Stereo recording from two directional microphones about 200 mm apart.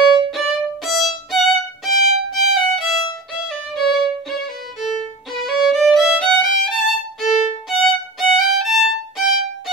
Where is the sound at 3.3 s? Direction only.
Centre (ahead or behind).